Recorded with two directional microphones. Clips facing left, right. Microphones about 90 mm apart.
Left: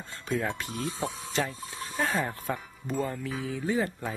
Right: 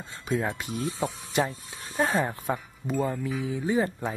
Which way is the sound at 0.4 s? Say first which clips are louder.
Right 2 dB; 15° right (ahead or behind).